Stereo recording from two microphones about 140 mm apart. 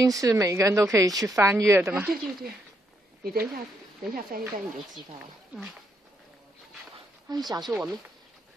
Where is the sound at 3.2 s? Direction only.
90° right.